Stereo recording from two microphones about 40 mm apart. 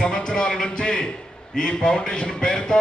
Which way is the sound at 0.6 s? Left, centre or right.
Centre.